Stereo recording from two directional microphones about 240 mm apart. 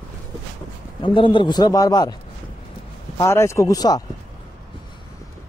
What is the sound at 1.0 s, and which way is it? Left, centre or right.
A man's voice, left.